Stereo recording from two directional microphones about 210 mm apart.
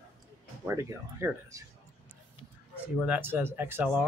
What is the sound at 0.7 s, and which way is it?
Speech, 15° right (ahead or behind).